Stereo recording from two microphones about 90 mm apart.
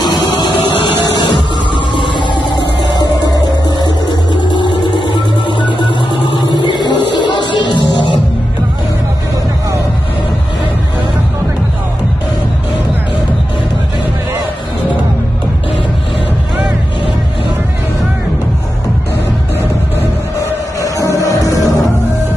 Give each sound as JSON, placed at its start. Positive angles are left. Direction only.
{"t": 0.3, "sound": "music", "side_deg": 65}
{"t": 5.9, "sound": "a sound", "side_deg": 65}
{"t": 20.8, "sound": "music", "side_deg": 40}